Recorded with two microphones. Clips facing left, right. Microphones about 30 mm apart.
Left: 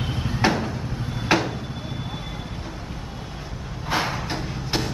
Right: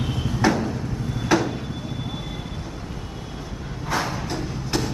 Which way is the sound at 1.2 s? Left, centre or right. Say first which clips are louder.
Right 1 dB; left.